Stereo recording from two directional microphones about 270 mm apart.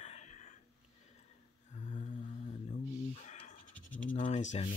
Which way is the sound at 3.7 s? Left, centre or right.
Centre.